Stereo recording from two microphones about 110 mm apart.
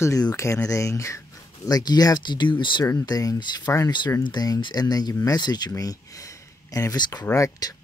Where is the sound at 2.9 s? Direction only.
35° left (ahead or behind).